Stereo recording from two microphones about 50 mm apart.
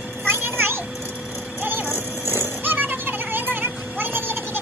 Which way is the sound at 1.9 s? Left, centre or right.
Right.